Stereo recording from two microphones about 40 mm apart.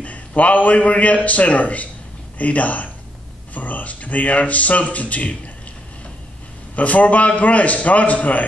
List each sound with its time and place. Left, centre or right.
0.0 s a man's voice: left
6.7 s a man's voice: left